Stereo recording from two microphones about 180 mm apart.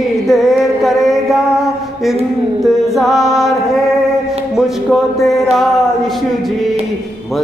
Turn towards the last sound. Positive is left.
turn(degrees=0)  # may be behind; listen again after turning